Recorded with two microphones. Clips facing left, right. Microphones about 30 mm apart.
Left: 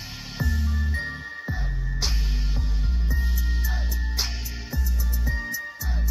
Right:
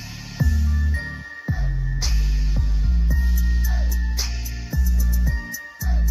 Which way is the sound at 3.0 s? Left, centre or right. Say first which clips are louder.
Right 2 dB; left.